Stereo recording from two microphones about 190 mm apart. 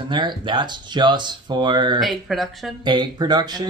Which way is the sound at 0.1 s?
25° right (ahead or behind).